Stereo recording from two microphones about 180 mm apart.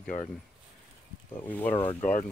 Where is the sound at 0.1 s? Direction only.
45° left (ahead or behind).